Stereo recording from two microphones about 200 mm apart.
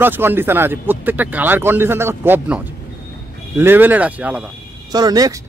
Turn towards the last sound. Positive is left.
turn(degrees=-20)  # may be behind; listen again after turning